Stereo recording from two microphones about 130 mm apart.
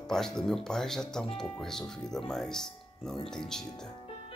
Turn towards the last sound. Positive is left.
turn(degrees=5)  # may be behind; listen again after turning